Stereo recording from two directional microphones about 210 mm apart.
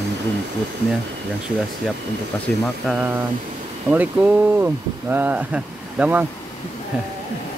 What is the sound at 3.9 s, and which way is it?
Speech, 10° right (ahead or behind).